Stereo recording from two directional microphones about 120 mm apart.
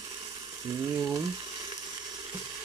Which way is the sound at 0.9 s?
10° right (ahead or behind).